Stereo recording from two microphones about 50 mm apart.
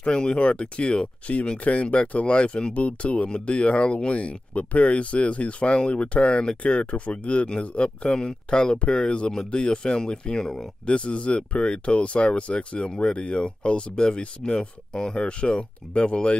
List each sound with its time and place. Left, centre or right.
0.0 s speech: centre
10.9 s speech: left